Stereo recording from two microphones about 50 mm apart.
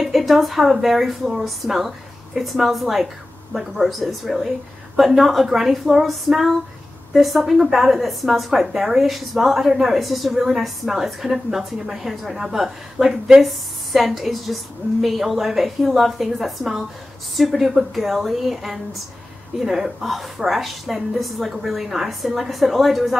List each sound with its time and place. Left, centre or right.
0.0 s a woman's voice: centre